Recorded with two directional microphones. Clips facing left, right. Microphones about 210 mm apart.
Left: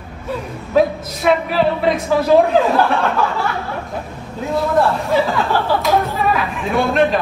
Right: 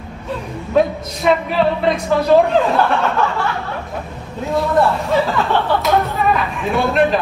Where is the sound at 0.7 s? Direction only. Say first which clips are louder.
Left 1 dB; 5° left (ahead or behind).